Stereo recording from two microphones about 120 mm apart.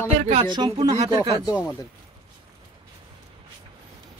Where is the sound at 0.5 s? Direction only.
40° right (ahead or behind).